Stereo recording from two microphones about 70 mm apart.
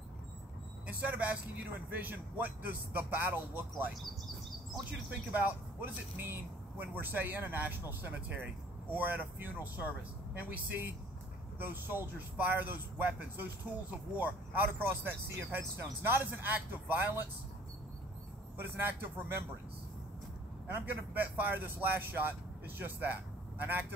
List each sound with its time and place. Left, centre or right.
0.8 s speech: right
5.3 s speech: right
18.6 s speech: right
20.6 s speech: right